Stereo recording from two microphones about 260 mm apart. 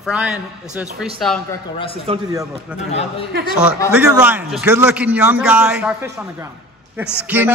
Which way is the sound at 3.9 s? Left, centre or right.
Centre.